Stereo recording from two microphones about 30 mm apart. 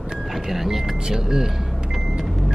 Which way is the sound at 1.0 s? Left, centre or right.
Right.